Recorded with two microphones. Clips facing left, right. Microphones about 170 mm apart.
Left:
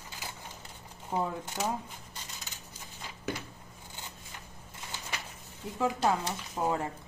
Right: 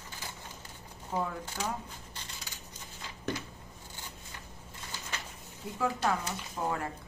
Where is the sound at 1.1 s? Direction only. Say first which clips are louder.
Left 2 dB; 20° left (ahead or behind).